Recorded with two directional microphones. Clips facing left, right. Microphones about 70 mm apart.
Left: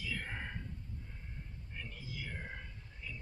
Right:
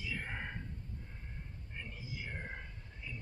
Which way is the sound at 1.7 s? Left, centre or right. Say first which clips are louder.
Even; centre.